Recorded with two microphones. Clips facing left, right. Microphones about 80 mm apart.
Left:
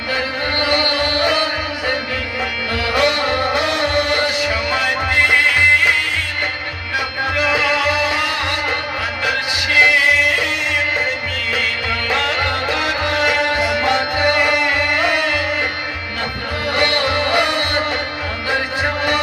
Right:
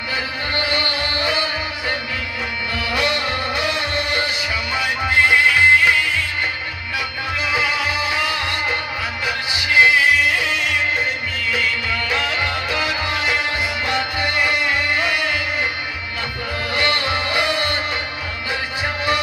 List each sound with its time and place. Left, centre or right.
0.6 s music: left
7.3 s music: left
11.5 s music: left
16.7 s music: left